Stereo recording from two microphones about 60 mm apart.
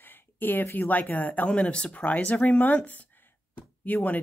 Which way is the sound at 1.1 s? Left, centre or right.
Left.